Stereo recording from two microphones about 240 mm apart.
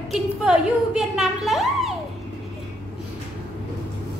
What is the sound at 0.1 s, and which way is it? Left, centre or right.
A woman's voice, centre.